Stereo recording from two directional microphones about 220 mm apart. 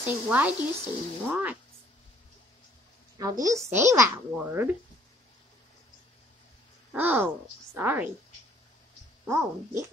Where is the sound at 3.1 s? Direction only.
15° right (ahead or behind).